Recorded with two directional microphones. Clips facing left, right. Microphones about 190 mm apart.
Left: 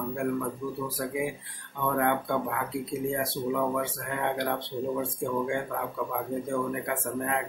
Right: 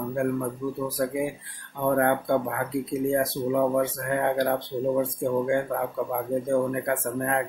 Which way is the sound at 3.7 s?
45° right (ahead or behind).